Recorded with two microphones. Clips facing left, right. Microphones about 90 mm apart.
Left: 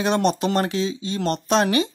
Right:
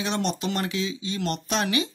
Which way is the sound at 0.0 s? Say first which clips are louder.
Left 7 dB; 50° left (ahead or behind).